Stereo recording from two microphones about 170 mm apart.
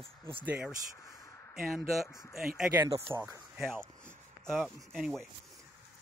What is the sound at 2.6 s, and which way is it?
Speech, 10° right (ahead or behind).